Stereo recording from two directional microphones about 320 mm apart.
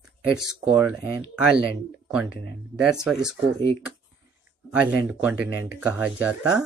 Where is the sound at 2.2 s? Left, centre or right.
Right.